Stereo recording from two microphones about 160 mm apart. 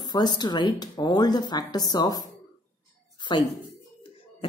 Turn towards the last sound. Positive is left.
turn(degrees=30)  # may be behind; listen again after turning